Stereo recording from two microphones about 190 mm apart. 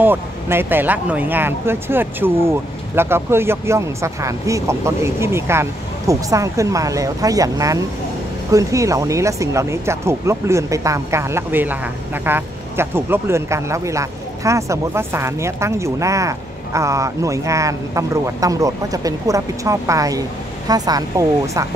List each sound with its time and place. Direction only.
0.0 s speech: 10° right (ahead or behind)